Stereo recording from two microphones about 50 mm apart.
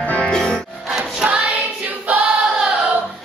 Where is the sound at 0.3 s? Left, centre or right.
Centre.